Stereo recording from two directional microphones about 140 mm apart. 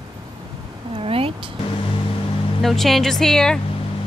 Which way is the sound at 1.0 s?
40° right (ahead or behind).